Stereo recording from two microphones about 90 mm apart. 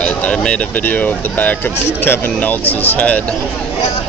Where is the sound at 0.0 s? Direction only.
10° left (ahead or behind).